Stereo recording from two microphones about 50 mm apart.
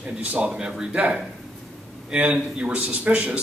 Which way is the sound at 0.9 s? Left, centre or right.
Right.